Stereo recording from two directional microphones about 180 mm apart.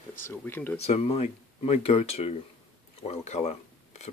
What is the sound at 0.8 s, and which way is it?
Speech, 35° left (ahead or behind).